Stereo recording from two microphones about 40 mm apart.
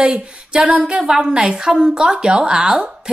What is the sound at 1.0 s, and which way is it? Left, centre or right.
Speech, centre.